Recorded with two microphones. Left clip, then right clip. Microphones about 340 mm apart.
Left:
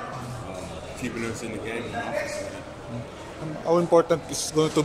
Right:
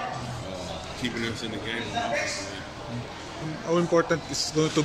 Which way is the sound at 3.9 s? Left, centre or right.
Left.